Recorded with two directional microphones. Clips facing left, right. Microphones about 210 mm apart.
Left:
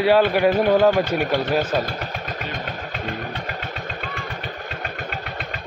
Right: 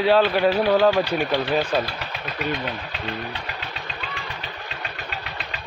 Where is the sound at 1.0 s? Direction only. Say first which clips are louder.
Left 1 dB; 50° left (ahead or behind).